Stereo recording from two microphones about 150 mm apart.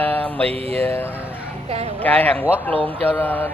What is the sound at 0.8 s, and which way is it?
A man's voice, 15° left (ahead or behind).